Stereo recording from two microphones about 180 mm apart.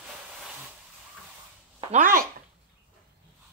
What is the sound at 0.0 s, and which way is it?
Hiss, 5° right (ahead or behind).